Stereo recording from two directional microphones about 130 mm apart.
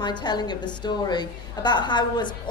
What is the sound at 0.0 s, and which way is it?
A woman's voice, 35° left (ahead or behind).